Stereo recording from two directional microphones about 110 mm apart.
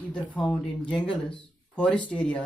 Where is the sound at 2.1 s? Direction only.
15° left (ahead or behind).